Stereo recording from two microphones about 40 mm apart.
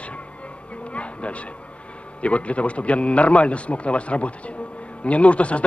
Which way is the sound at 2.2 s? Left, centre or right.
Left.